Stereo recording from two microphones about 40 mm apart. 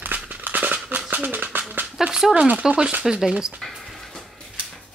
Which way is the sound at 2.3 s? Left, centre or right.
Right.